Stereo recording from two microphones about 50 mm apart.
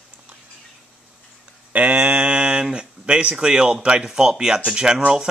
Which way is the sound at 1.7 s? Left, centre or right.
Right.